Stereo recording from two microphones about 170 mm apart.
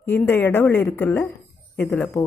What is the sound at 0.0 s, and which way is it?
Speech, 10° left (ahead or behind).